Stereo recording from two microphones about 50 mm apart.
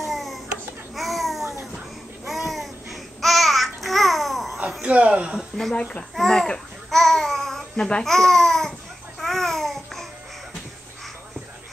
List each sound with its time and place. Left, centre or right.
0.0 s a sound: centre
0.9 s babbling: centre
1.4 s babbling: right
2.2 s babbling: centre
4.8 s speech: right
6.1 s babbling: centre
7.7 s a child's voice: left
8.0 s speech: centre
9.2 s babbling: centre